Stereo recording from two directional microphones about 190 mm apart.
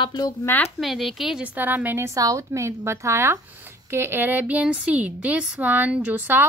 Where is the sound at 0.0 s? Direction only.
20° left (ahead or behind).